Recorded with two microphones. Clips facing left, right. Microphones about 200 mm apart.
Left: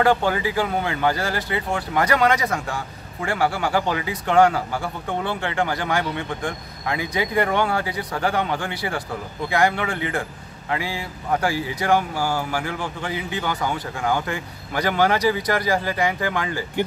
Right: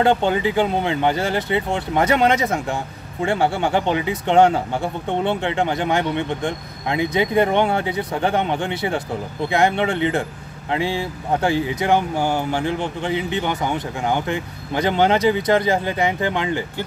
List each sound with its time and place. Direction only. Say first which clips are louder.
0.0 s speech: right 2 dB; 25° right (ahead or behind)